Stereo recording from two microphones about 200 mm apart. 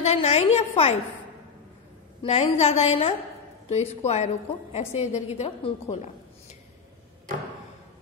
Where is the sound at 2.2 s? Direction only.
30° left (ahead or behind).